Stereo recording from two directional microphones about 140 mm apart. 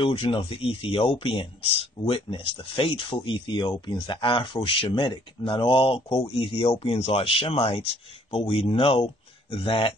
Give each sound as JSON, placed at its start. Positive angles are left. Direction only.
{"t": 0.0, "sound": "speech", "side_deg": 40}